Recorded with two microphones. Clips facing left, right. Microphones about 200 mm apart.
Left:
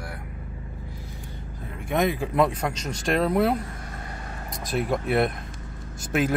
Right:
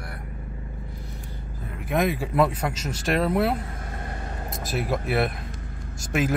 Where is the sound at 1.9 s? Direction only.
Centre (ahead or behind).